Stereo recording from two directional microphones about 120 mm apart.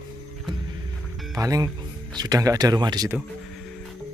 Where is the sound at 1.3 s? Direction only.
30° right (ahead or behind).